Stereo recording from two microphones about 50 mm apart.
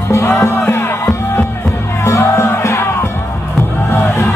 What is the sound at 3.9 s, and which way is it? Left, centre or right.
Crowd, left.